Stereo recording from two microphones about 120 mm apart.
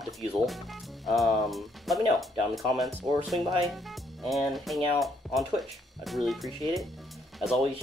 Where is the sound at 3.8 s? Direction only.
Centre (ahead or behind).